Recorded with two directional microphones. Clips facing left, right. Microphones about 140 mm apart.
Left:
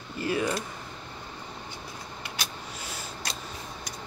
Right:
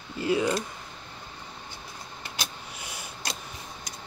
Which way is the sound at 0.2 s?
15° right (ahead or behind).